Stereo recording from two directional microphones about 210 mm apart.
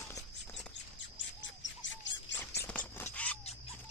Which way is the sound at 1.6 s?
60° left (ahead or behind).